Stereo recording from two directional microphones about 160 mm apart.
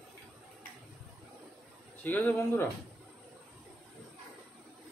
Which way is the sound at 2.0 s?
10° left (ahead or behind).